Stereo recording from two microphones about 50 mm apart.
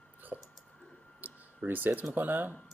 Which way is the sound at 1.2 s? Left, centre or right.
Right.